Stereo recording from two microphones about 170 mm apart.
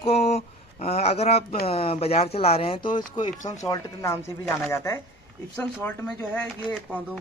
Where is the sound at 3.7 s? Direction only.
15° left (ahead or behind).